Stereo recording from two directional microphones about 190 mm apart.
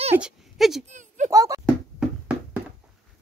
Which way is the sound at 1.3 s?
20° right (ahead or behind).